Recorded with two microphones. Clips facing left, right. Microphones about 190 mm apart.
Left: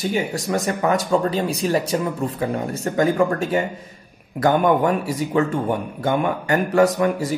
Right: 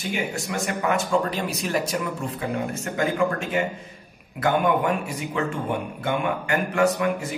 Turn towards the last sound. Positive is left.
turn(degrees=35)  # may be behind; listen again after turning